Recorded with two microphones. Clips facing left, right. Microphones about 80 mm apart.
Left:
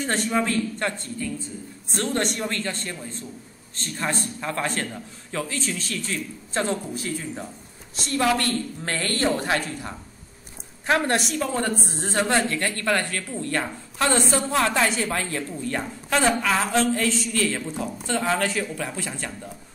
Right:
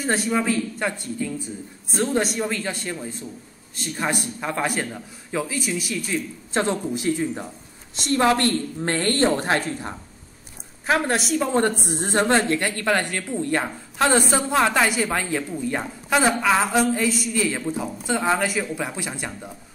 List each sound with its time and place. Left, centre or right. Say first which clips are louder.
0.0 s a man's voice: right 1 dB; centre
8.2 s a woman's voice: right 3 dB; right
10.9 s a woman's voice: right 1 dB; centre
11.4 s a woman's voice: right 4 dB; right